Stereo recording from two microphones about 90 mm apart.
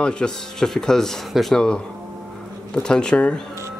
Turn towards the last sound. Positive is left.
turn(degrees=10)  # may be behind; listen again after turning